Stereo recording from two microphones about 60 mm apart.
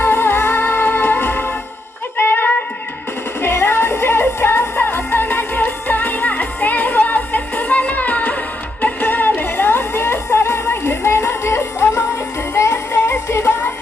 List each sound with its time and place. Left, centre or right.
0.0 s music: left
2.1 s music: left
3.3 s music: left